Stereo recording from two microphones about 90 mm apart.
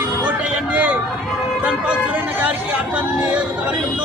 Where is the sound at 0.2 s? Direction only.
15° right (ahead or behind).